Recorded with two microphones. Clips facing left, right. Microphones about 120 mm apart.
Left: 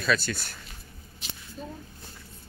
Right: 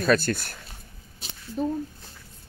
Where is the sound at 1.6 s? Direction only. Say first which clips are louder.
Right 13 dB; 65° right (ahead or behind).